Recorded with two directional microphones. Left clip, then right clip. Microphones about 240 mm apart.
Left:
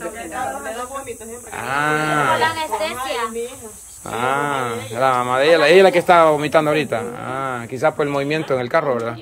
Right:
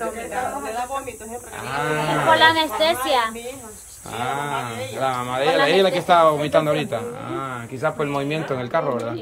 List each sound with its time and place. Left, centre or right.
1.6 s speech: centre
2.5 s a woman's voice: right
4.1 s speech: centre